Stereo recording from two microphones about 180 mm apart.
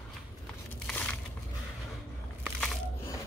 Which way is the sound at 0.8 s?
5° left (ahead or behind).